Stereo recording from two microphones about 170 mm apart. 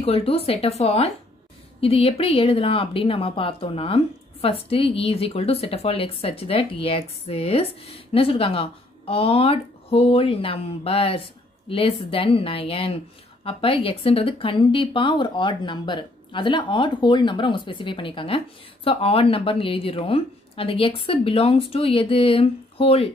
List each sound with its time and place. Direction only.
0.0 s speech: 35° left (ahead or behind)